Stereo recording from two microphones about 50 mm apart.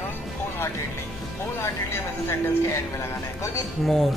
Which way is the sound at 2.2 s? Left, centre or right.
Left.